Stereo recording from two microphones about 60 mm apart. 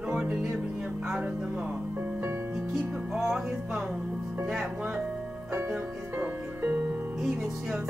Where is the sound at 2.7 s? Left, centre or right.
Centre.